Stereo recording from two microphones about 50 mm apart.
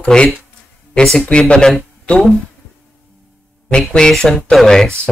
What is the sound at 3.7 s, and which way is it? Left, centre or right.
Speech, centre.